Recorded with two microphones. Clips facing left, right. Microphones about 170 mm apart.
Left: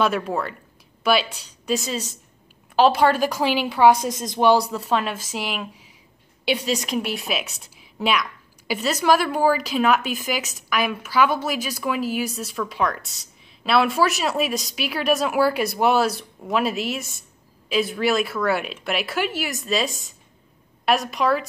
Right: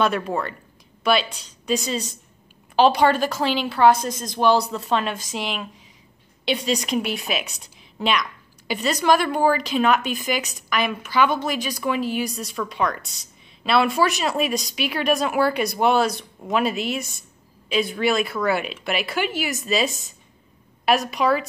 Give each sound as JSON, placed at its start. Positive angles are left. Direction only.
{"t": 0.0, "sound": "a woman's voice", "side_deg": 5}